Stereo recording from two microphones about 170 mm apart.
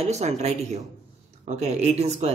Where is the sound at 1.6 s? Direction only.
40° right (ahead or behind).